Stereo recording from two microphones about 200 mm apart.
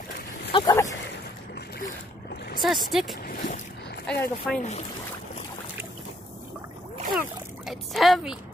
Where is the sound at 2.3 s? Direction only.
55° left (ahead or behind).